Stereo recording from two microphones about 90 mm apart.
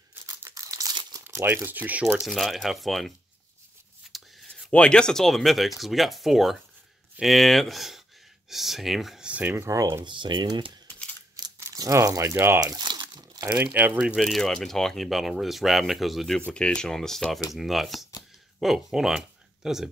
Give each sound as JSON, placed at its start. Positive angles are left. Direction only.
{"t": 0.1, "sound": "crumpling", "side_deg": -25}
{"t": 0.6, "sound": "crumpling", "side_deg": -40}
{"t": 1.2, "sound": "speech", "side_deg": -25}
{"t": 2.2, "sound": "speech", "side_deg": 0}
{"t": 4.1, "sound": "whispering", "side_deg": -5}
{"t": 4.6, "sound": "speech", "side_deg": 10}
{"t": 9.3, "sound": "speech", "side_deg": -15}
{"t": 9.6, "sound": "speech", "side_deg": -35}
{"t": 10.0, "sound": "speech", "side_deg": -60}
{"t": 11.6, "sound": "speech", "side_deg": -40}
{"t": 12.5, "sound": "crumpling", "side_deg": -45}
{"t": 13.7, "sound": "speech", "side_deg": -20}
{"t": 14.2, "sound": "speech", "side_deg": 5}
{"t": 16.3, "sound": "speech", "side_deg": 10}